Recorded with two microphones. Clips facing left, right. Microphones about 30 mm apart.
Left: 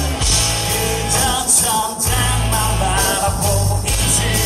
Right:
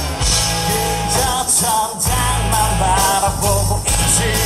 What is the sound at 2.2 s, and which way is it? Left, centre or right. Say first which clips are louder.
Music: right 4 dB; right.